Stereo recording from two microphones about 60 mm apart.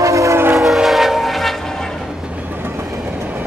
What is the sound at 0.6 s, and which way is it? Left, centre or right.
Train, centre.